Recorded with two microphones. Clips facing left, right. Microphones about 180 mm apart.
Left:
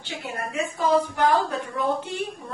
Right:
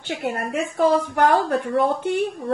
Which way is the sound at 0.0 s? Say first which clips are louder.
Right 7 dB; 60° right (ahead or behind).